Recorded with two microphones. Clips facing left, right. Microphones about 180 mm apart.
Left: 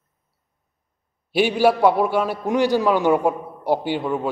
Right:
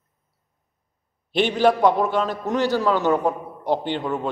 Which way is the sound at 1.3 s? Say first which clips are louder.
Left 1 dB; 10° left (ahead or behind).